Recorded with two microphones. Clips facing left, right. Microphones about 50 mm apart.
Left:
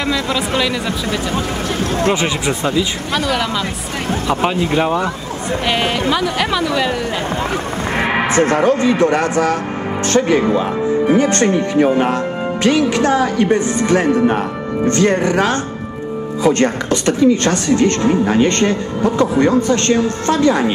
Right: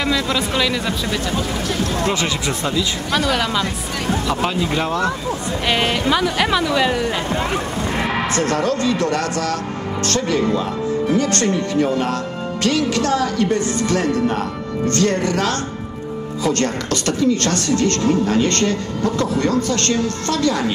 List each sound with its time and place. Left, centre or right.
0.1 s speech: centre
1.3 s a woman's voice: left
3.2 s speech: centre
4.3 s a woman's voice: left
5.7 s speech: centre
8.0 s a woman's voice: left